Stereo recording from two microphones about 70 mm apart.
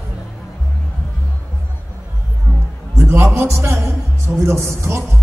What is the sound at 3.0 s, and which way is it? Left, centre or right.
Music, right.